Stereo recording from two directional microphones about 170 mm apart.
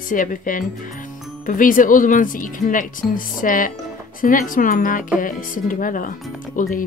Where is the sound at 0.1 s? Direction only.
50° left (ahead or behind).